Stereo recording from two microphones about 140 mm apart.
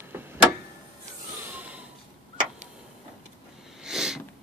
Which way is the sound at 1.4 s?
10° right (ahead or behind).